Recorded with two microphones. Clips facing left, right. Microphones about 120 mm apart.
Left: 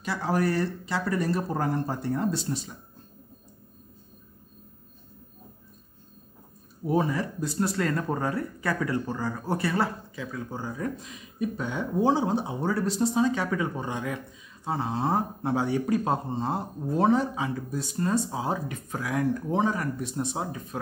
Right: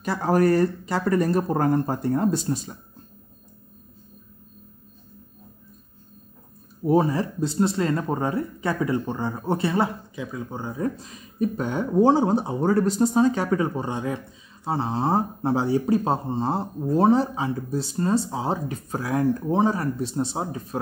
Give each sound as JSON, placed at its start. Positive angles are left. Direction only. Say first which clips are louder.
{"t": 0.0, "sound": "speech", "louder": "right 6 dB", "side_deg": -45}
{"t": 6.9, "sound": "speech", "louder": "right 5 dB", "side_deg": -30}